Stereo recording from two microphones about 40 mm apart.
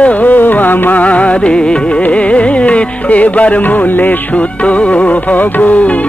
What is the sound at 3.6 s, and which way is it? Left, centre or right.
Music, left.